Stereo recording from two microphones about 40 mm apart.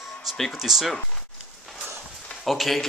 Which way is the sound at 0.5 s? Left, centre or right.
Centre.